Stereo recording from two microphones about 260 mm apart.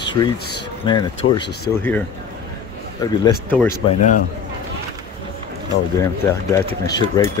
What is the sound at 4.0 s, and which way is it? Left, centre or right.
Speech, left.